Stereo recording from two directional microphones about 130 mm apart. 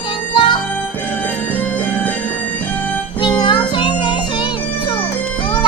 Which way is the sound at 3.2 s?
35° left (ahead or behind).